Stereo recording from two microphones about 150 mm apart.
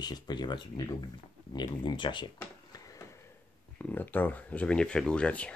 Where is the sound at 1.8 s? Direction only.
30° left (ahead or behind).